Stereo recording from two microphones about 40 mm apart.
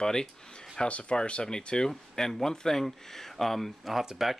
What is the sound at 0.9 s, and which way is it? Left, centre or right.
Speech, left.